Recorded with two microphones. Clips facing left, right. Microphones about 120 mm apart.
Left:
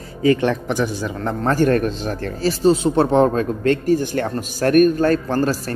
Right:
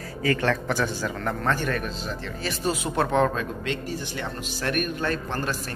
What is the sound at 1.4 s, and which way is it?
Speech, 40° left (ahead or behind).